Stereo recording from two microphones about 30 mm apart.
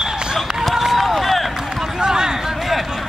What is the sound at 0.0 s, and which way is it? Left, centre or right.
Basketball bounce, centre.